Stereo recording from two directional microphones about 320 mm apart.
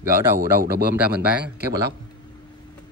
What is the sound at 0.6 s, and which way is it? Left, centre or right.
Speech, right.